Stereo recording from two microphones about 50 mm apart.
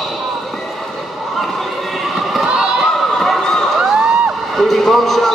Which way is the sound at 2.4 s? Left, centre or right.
Centre.